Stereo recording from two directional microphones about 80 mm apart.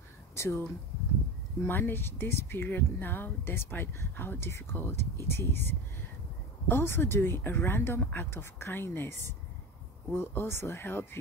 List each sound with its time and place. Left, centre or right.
0.3 s speech: left
10.1 s speech: left